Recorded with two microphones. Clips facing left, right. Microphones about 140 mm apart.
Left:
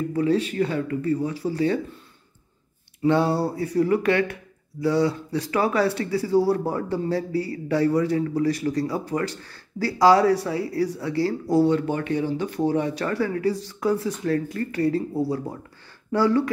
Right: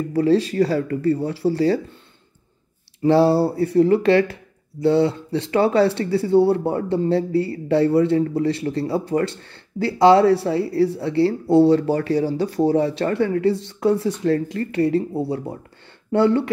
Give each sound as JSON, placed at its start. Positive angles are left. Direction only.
{"t": 0.1, "sound": "speech", "side_deg": -35}
{"t": 3.0, "sound": "speech", "side_deg": -30}